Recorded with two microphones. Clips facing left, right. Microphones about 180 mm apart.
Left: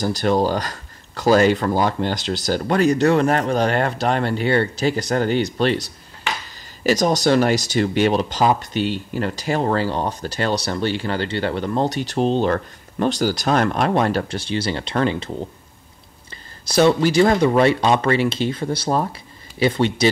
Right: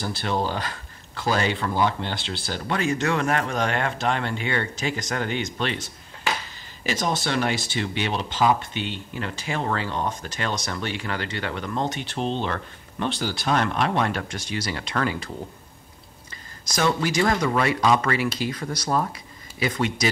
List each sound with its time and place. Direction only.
0.0 s speech: 40° left (ahead or behind); by 15.3 s 25° left (ahead or behind)
16.6 s speech: 30° left (ahead or behind)